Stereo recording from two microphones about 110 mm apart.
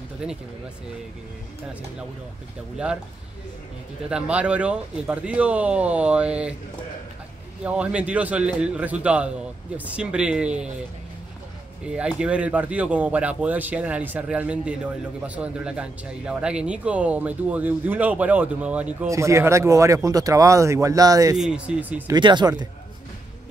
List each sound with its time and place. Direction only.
0.2 s speech: 10° right (ahead or behind)
4.1 s speech: 10° right (ahead or behind)
7.6 s speech: 10° right (ahead or behind)
11.8 s speech: 10° right (ahead or behind)
19.0 s speech: 25° right (ahead or behind)
21.4 s speech: 10° right (ahead or behind)
22.0 s speech: 40° right (ahead or behind)